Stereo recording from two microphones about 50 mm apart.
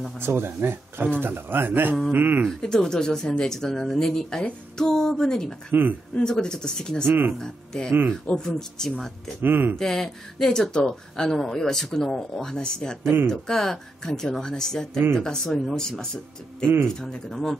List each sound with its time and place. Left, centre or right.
0.2 s speech: right
2.6 s speech: centre
5.7 s speech: right
6.4 s speech: centre
7.1 s speech: right
7.3 s speech: centre
9.4 s speech: right
9.8 s speech: centre